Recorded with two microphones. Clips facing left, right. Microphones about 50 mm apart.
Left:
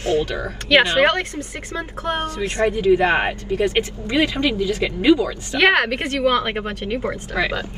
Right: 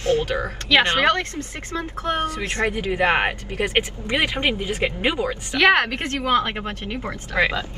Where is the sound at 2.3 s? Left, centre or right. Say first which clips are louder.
Left 3 dB; right.